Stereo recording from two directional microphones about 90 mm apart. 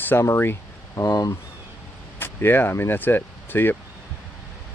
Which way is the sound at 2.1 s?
25° left (ahead or behind).